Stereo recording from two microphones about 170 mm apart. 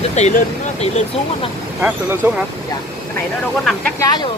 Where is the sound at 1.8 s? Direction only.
10° right (ahead or behind).